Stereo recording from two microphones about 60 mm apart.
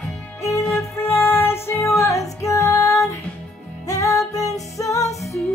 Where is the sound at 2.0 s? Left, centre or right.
Left.